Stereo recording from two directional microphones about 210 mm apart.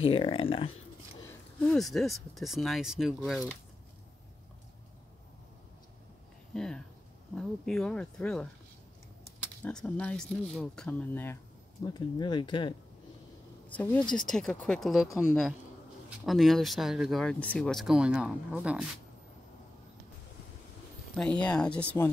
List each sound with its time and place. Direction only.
0.0 s speech: 25° left (ahead or behind)
1.6 s speech: centre (ahead or behind)
6.5 s speech: 5° left (ahead or behind)
9.6 s speech: 5° left (ahead or behind)
11.8 s speech: 20° left (ahead or behind)
13.7 s speech: 5° left (ahead or behind)
16.3 s speech: centre (ahead or behind)
21.2 s speech: 5° left (ahead or behind)